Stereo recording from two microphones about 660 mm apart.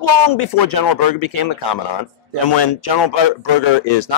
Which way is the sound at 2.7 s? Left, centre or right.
Left.